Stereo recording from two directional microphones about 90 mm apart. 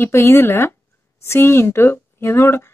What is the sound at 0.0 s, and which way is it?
Speech, 30° left (ahead or behind).